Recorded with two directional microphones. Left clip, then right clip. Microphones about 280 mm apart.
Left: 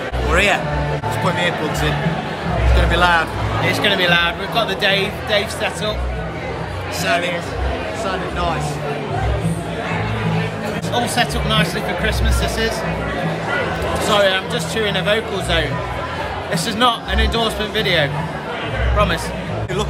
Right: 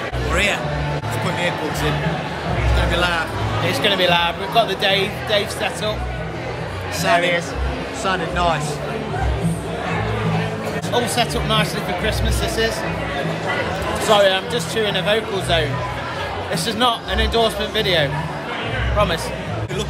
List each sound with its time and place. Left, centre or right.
0.3 s speech: centre
2.9 s speech: centre
3.6 s speech: centre
7.1 s speech: right
10.9 s speech: centre
14.0 s speech: centre